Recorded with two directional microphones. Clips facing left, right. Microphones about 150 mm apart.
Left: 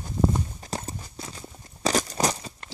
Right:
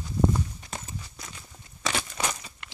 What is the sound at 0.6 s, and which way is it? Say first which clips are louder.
Walk: left 5 dB; 35° left (ahead or behind).